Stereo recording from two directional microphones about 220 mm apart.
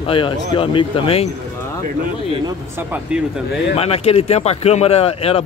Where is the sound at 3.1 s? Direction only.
5° right (ahead or behind).